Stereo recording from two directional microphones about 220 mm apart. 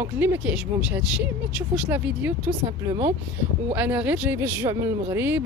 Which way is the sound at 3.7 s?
10° right (ahead or behind).